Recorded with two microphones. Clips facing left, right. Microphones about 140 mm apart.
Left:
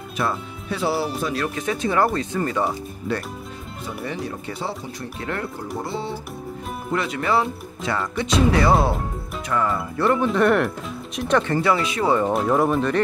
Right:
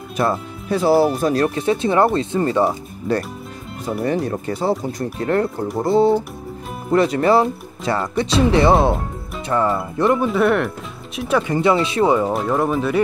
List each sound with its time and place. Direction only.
0.2 s speech: 40° right (ahead or behind)
3.1 s speech: 40° right (ahead or behind)
8.5 s speech: 25° right (ahead or behind)
10.1 s speech: 5° right (ahead or behind)
11.5 s speech: 25° right (ahead or behind)
12.1 s speech: 5° right (ahead or behind)